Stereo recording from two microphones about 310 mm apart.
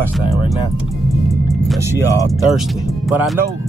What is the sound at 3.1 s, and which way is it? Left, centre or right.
Speech, centre.